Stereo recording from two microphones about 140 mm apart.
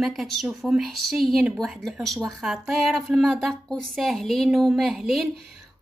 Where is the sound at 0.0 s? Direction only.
Centre (ahead or behind).